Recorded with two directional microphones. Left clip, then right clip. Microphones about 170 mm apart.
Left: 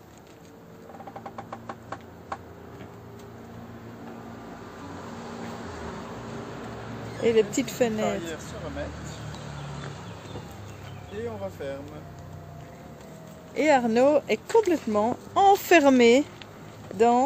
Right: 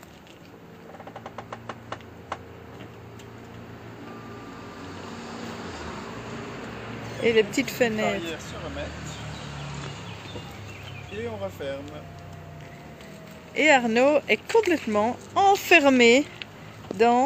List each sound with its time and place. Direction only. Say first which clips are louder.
1.7 s a sound: right 1 dB; 20° right (ahead or behind)
7.2 s speech: right 1 dB; 10° left (ahead or behind)
11.1 s speech: right 1 dB; 10° left (ahead or behind)
13.6 s speech: right 2 dB; 10° left (ahead or behind)
15.3 s speech: even; 20° left (ahead or behind)